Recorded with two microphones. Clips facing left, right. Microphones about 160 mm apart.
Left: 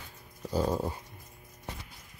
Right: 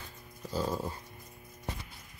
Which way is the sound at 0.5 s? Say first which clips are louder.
Left 4 dB; 15° left (ahead or behind).